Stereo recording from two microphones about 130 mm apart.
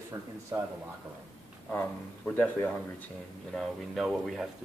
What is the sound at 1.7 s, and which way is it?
Speech, 15° left (ahead or behind).